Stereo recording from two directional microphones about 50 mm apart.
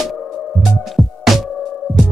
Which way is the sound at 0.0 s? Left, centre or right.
Centre.